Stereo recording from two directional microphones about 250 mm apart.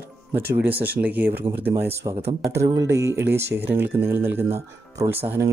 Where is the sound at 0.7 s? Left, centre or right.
Centre.